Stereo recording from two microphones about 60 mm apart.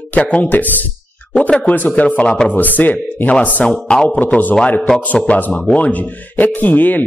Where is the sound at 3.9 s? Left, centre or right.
Centre.